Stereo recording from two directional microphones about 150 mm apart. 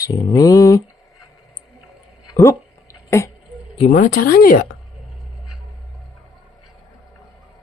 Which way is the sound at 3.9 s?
65° left (ahead or behind).